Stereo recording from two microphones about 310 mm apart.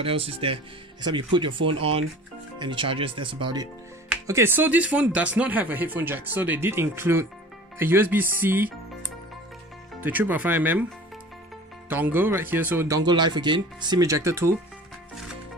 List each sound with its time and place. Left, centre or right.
0.0 s speech: centre
9.9 s speech: centre
11.9 s speech: centre